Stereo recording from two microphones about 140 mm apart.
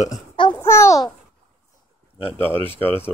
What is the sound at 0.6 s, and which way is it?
Babbling, 20° left (ahead or behind).